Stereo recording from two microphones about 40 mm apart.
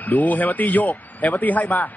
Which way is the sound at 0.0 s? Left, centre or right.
Left.